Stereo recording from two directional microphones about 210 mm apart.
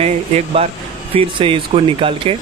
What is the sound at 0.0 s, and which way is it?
Speech, 30° right (ahead or behind).